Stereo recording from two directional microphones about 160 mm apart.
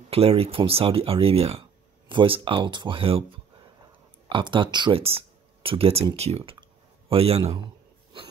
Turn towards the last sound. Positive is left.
turn(degrees=-35)  # may be behind; listen again after turning